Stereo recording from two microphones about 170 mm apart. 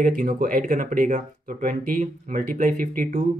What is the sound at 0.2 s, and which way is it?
Speech, 55° right (ahead or behind).